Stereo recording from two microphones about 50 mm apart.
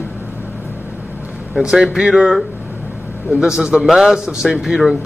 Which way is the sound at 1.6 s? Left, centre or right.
Centre.